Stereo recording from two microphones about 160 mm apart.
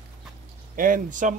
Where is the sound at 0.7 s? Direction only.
60° right (ahead or behind).